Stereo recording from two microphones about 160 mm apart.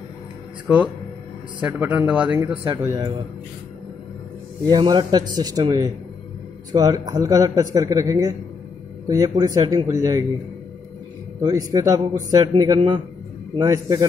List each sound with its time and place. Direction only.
1.6 s a man's voice: 10° right (ahead or behind)
4.6 s a man's voice: 25° right (ahead or behind)
11.4 s a man's voice: 20° right (ahead or behind)